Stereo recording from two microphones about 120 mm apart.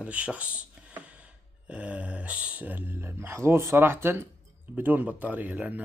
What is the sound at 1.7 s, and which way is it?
Speech, 10° right (ahead or behind).